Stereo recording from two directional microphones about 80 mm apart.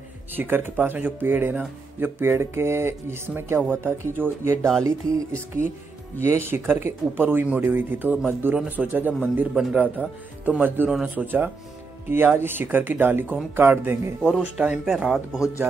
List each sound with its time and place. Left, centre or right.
0.4 s speech: right
5.1 s music: centre
6.3 s speech: right
9.5 s speech: centre
9.8 s speech: centre
14.4 s speech: centre